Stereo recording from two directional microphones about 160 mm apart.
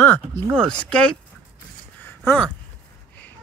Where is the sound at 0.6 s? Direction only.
5° left (ahead or behind).